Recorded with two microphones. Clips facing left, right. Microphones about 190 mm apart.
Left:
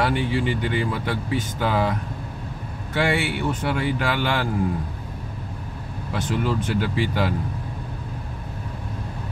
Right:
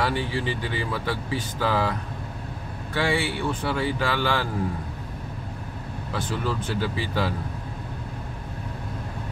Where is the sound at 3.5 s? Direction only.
20° left (ahead or behind).